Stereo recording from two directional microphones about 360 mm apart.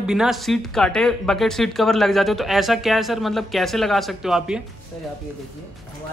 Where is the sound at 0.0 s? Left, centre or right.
Centre.